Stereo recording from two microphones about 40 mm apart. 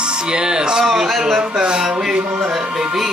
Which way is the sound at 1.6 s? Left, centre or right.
Centre.